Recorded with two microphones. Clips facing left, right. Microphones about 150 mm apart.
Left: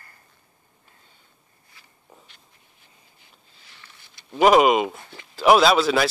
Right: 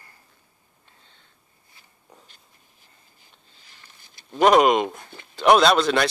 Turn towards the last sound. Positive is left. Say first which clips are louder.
# even
turn(degrees=5)  # may be behind; listen again after turning